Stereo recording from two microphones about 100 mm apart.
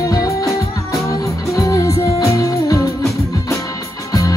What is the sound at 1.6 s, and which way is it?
Music, 35° left (ahead or behind).